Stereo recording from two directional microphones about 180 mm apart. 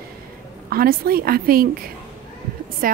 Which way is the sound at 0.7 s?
55° right (ahead or behind).